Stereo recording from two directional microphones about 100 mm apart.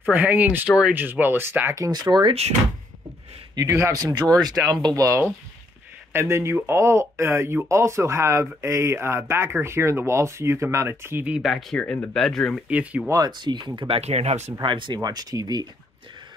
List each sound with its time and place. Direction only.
0.1 s speech: 15° right (ahead or behind)
0.7 s speech: 10° right (ahead or behind)
0.9 s speech: 20° right (ahead or behind)
1.8 s speech: 45° right (ahead or behind)
3.5 s speech: 35° right (ahead or behind)
11.3 s speech: centre (ahead or behind)
11.8 s speech: 10° left (ahead or behind)
12.6 s speech: 15° right (ahead or behind)
13.4 s speech: 45° right (ahead or behind)
13.8 s speech: 80° right
14.6 s speech: 55° right (ahead or behind)
15.0 s speech: 40° right (ahead or behind)